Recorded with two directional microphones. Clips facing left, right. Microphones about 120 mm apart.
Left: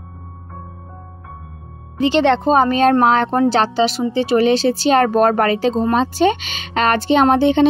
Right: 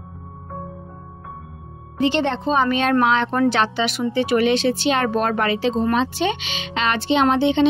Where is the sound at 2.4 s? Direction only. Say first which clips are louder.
Left 5 dB; 40° left (ahead or behind).